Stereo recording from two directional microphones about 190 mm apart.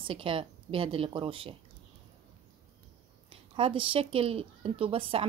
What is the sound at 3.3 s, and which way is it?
Speech, 30° right (ahead or behind).